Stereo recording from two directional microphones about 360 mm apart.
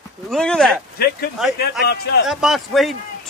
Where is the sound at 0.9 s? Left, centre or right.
Left.